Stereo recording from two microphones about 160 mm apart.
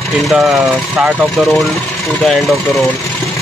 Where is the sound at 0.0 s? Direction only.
Centre (ahead or behind).